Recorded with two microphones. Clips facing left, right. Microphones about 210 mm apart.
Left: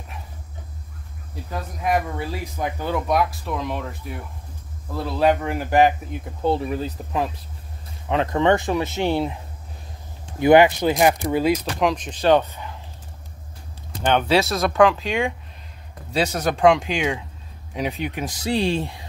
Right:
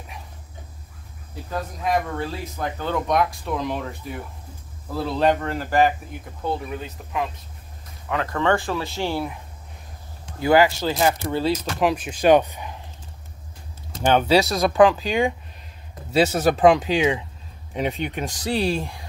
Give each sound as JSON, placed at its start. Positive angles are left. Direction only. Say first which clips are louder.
{"t": 1.5, "sound": "speech", "louder": "even", "side_deg": 10}
{"t": 6.4, "sound": "speech", "louder": "left 5 dB", "side_deg": 30}
{"t": 8.1, "sound": "speech", "louder": "left 3 dB", "side_deg": 20}
{"t": 10.4, "sound": "speech", "louder": "left 4 dB", "side_deg": 20}
{"t": 11.8, "sound": "speech", "louder": "right 4 dB", "side_deg": -10}
{"t": 14.1, "sound": "speech", "louder": "right 1 dB", "side_deg": 0}
{"t": 18.5, "sound": "speech", "louder": "left 1 dB", "side_deg": 15}